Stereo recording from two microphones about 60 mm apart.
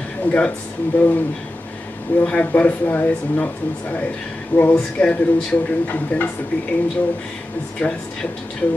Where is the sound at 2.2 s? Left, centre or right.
Left.